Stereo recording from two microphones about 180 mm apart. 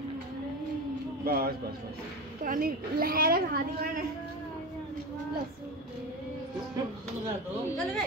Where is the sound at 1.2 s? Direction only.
60° right (ahead or behind).